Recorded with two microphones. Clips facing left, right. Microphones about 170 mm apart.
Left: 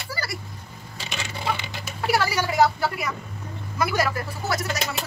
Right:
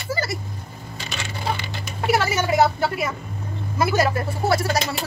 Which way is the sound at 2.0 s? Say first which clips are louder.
Right 2 dB; 20° right (ahead or behind).